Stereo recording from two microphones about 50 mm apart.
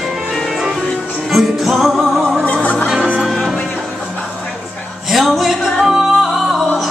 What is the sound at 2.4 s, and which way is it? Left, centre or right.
Music, left.